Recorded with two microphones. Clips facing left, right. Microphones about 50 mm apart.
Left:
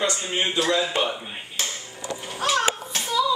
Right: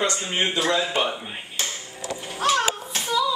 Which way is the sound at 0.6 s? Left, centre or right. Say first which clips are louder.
Left 1 dB; centre.